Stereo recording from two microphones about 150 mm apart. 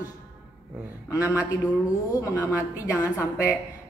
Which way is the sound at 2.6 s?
20° left (ahead or behind).